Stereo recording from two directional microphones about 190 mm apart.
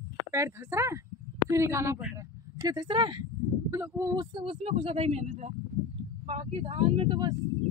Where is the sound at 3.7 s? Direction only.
15° right (ahead or behind).